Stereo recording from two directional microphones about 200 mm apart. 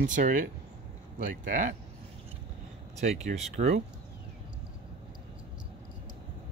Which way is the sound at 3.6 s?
35° right (ahead or behind).